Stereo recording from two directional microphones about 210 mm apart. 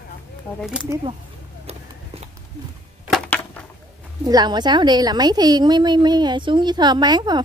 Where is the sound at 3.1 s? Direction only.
5° left (ahead or behind).